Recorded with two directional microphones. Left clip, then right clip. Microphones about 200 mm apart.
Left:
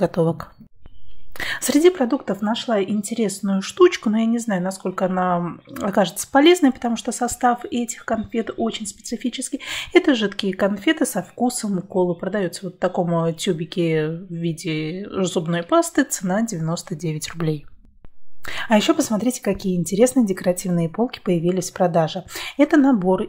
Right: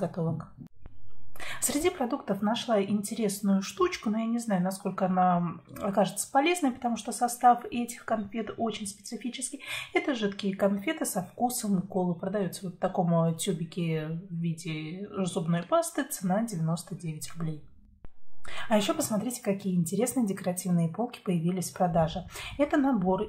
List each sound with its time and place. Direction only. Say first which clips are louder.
0.0 s speech: left 13 dB; 40° left (ahead or behind)